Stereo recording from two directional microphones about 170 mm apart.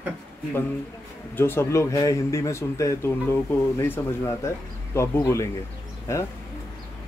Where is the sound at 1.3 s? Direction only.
15° left (ahead or behind).